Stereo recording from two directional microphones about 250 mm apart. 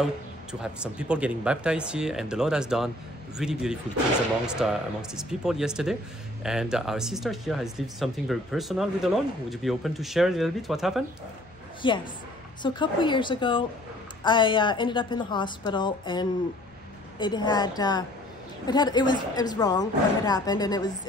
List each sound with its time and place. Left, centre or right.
0.0 s speech: centre
11.8 s a woman's voice: centre